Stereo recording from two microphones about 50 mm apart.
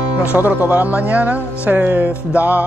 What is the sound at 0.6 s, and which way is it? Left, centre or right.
Speech, right.